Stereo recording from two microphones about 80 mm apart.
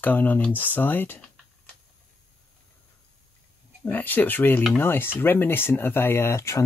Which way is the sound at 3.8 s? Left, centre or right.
Left.